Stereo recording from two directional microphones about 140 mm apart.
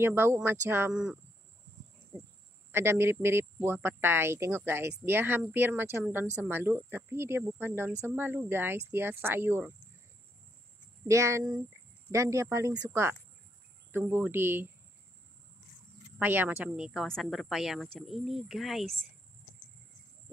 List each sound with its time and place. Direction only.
0.0 s speech: 15° right (ahead or behind)
2.7 s speech: 15° right (ahead or behind)
11.1 s speech: 20° right (ahead or behind)
16.2 s a woman's voice: 15° right (ahead or behind)